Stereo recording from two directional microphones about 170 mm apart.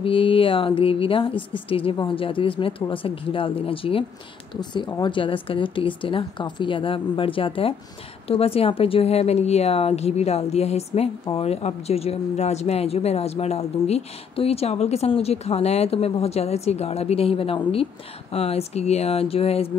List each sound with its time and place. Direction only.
0.0 s speech: 30° left (ahead or behind)